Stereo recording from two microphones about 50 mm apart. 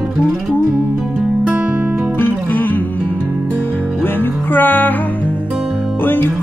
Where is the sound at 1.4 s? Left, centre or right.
Right.